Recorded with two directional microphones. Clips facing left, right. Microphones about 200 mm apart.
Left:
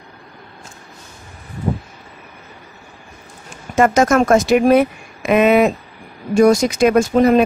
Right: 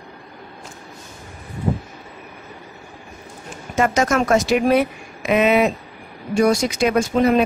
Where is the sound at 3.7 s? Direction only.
50° left (ahead or behind).